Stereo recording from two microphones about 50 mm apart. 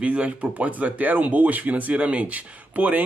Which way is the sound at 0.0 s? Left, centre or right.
Right.